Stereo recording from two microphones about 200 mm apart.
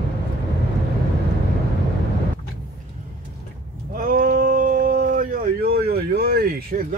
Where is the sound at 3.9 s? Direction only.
45° right (ahead or behind).